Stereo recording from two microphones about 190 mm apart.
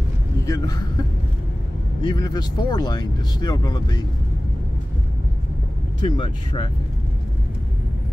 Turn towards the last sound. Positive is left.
turn(degrees=25)  # may be behind; listen again after turning